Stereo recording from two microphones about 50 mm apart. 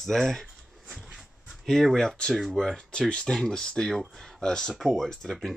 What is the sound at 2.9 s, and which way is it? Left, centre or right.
Speech, centre.